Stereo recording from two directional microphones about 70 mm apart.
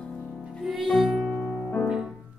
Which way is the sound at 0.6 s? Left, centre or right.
Centre.